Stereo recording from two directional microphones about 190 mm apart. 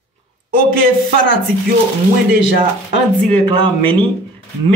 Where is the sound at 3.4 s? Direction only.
25° right (ahead or behind).